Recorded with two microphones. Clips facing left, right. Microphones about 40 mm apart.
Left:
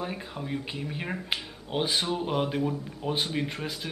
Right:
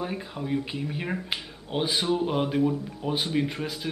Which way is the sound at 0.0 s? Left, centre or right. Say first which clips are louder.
Right 2 dB; centre.